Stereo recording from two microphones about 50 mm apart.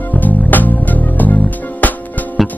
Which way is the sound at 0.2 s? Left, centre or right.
Left.